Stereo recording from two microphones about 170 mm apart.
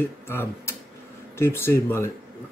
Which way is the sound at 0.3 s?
15° left (ahead or behind).